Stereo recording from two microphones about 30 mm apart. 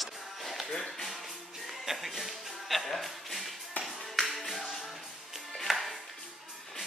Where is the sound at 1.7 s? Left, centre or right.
Centre.